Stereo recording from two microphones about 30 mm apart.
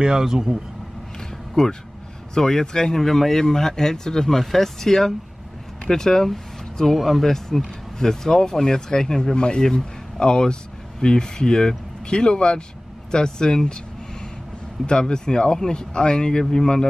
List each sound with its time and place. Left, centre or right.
0.0 s speech: right
1.5 s speech: centre
14.9 s speech: left